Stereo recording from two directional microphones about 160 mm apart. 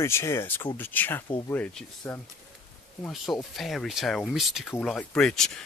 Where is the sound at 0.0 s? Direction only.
15° left (ahead or behind).